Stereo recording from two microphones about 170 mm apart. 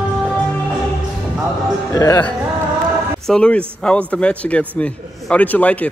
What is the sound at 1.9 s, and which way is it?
Speech, 20° left (ahead or behind).